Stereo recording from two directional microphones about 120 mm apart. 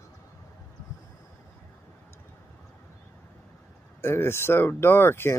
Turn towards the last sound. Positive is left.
turn(degrees=20)  # may be behind; listen again after turning